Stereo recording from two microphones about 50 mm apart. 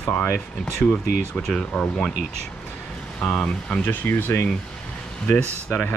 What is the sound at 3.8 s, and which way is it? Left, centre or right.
Speech, left.